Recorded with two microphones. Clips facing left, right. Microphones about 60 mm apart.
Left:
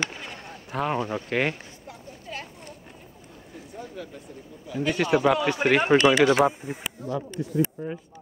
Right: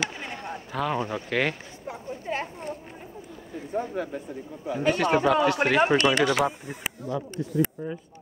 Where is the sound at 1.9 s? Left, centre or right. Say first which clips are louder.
Right 8 dB; right.